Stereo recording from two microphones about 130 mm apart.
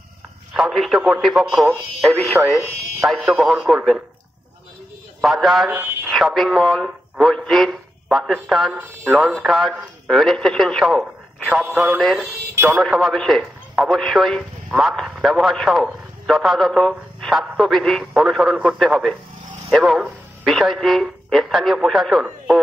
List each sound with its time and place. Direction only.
0.6 s a man's voice: centre (ahead or behind)
5.2 s a man's voice: centre (ahead or behind)
5.7 s a man's voice: 15° right (ahead or behind)
6.0 s a man's voice: centre (ahead or behind)
11.4 s a man's voice: 10° right (ahead or behind)
12.0 s a man's voice: centre (ahead or behind)
12.5 s a man's voice: 20° right (ahead or behind)
12.8 s a man's voice: centre (ahead or behind)